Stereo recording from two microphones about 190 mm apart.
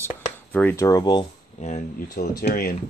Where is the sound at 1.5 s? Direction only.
35° left (ahead or behind).